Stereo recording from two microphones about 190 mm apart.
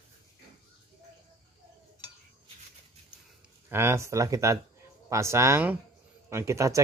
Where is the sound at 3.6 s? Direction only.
15° right (ahead or behind).